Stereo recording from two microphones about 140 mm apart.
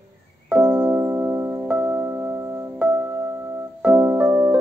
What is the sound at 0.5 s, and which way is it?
Music, 15° right (ahead or behind).